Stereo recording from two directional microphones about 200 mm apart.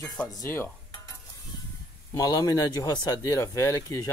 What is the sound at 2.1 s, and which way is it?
Speech, 15° left (ahead or behind).